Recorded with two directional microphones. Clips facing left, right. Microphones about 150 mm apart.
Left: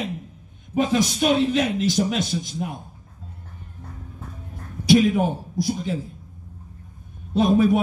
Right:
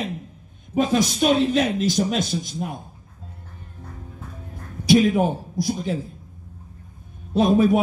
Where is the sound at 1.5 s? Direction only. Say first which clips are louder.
Right 1 dB; 40° right (ahead or behind).